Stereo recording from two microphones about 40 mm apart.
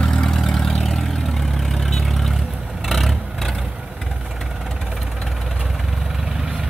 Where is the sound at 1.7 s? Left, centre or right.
Centre.